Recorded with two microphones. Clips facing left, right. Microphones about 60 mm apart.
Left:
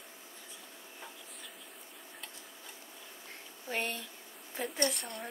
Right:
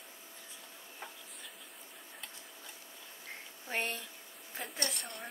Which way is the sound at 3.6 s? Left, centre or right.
Centre.